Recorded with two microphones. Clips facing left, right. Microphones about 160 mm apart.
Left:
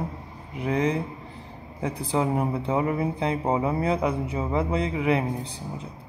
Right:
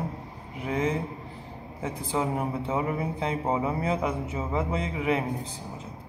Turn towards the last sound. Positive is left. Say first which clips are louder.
# left 3 dB
turn(degrees=35)  # may be behind; listen again after turning